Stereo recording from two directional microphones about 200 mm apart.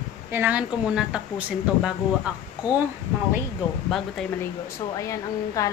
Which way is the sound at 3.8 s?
Centre (ahead or behind).